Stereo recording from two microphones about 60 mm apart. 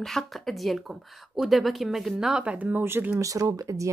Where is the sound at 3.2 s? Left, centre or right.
Right.